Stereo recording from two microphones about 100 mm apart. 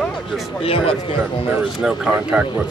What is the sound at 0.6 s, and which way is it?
Speech, 70° left (ahead or behind).